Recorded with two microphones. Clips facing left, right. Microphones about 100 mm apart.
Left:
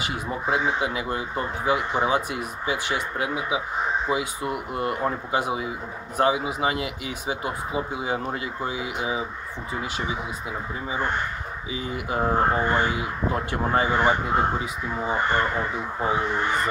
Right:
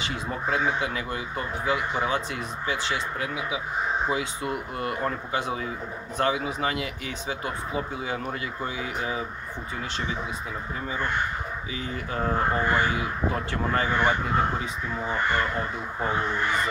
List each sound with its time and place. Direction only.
0.1 s speech: 20° left (ahead or behind)
11.7 s speech: 20° left (ahead or behind)